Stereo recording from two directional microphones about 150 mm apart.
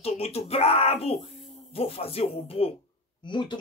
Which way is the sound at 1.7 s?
40° left (ahead or behind).